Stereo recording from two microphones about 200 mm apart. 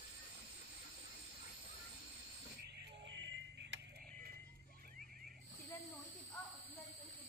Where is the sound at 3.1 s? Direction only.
65° right (ahead or behind).